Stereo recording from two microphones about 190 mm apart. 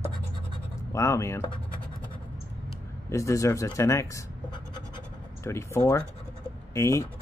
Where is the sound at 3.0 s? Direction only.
15° left (ahead or behind).